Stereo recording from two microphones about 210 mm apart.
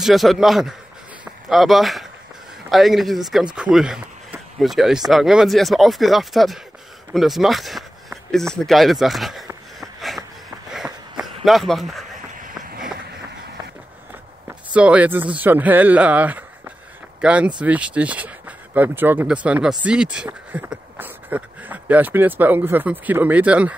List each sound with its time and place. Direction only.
0.0 s a man's voice: centre (ahead or behind)
7.2 s a sound: centre (ahead or behind)
8.5 s a man's voice: centre (ahead or behind)
9.8 s a sound: centre (ahead or behind)
12.4 s run: 45° right (ahead or behind)
14.7 s speech: 5° right (ahead or behind)